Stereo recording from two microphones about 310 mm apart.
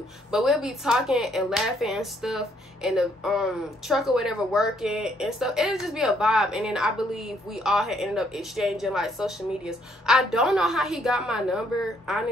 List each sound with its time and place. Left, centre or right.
0.3 s speech: centre